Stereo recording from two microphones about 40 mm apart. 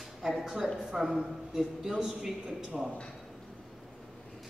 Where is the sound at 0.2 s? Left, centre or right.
Centre.